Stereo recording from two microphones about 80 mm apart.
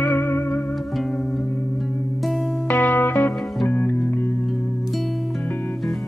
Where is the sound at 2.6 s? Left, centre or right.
Left.